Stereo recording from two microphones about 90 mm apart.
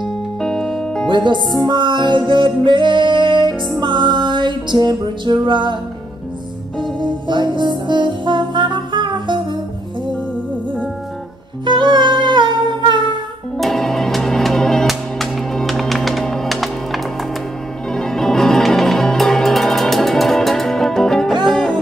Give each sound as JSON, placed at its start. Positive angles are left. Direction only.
{"t": 0.0, "sound": "music", "side_deg": 5}
{"t": 1.0, "sound": "music", "side_deg": -60}
{"t": 6.8, "sound": "music", "side_deg": -60}
{"t": 11.6, "sound": "humming", "side_deg": -60}
{"t": 13.6, "sound": "music", "side_deg": 5}